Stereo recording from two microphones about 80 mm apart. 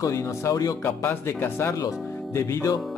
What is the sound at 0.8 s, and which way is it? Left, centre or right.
Speech, left.